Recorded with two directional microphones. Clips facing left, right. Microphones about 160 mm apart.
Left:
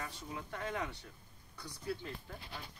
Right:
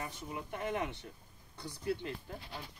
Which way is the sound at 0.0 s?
20° right (ahead or behind).